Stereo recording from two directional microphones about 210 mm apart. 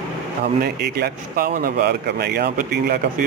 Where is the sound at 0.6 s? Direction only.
50° right (ahead or behind).